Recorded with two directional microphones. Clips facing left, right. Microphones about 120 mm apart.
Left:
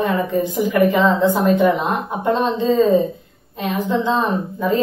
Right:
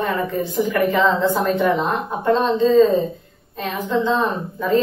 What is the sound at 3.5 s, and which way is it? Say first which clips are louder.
A woman's voice: left 2 dB; 15° left (ahead or behind).